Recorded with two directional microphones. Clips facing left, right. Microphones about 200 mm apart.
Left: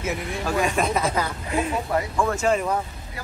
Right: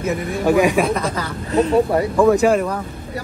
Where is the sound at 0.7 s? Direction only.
Centre (ahead or behind).